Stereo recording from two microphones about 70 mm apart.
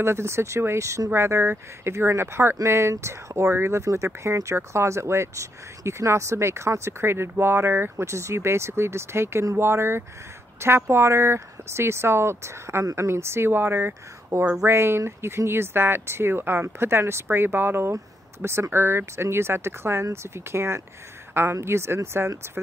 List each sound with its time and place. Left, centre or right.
0.0 s speech: right